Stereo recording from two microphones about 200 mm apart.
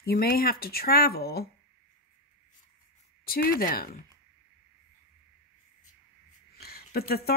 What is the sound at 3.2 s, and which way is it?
Speech, 50° left (ahead or behind).